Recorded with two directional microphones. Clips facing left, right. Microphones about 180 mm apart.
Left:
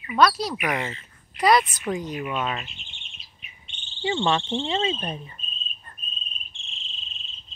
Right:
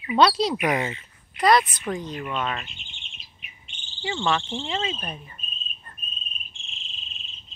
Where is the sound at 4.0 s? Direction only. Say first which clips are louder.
Left 2 dB; 30° left (ahead or behind).